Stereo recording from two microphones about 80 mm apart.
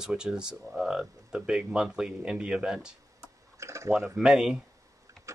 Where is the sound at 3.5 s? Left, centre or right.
Right.